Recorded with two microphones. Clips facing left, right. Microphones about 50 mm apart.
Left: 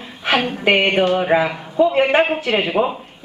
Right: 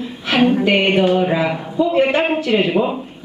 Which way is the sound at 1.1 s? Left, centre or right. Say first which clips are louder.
Even; left.